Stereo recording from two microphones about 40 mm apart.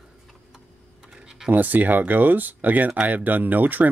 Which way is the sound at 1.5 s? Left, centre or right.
Right.